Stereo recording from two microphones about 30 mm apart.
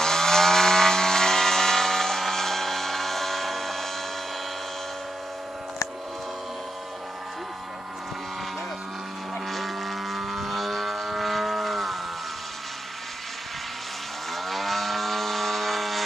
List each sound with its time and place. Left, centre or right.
0.0 s chainsaw: centre
9.5 s vehicle: centre
14.3 s vehicle: centre